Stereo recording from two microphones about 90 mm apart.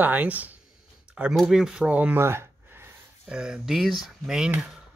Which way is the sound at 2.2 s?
30° right (ahead or behind).